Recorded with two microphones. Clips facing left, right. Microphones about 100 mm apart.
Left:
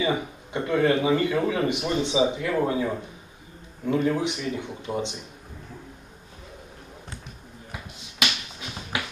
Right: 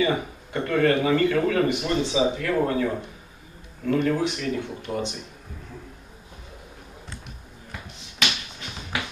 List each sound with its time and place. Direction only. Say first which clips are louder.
0.0 s speech: right 2 dB; 20° left (ahead or behind)
7.7 s finger snapping: even; 5° left (ahead or behind)